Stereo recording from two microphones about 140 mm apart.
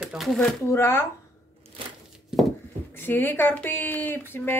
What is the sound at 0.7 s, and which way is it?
Speech, 20° left (ahead or behind).